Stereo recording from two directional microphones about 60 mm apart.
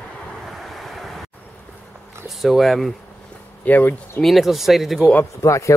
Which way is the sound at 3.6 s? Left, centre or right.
Left.